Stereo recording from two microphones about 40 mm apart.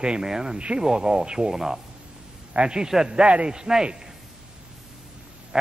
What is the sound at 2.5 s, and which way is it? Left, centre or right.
Speech, right.